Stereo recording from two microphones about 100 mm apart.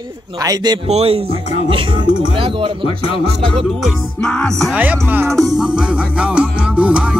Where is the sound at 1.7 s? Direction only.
60° right (ahead or behind).